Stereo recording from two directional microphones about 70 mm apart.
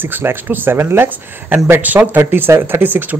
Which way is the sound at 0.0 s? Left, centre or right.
Right.